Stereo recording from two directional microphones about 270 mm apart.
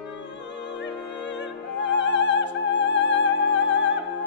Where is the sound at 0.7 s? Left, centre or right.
Left.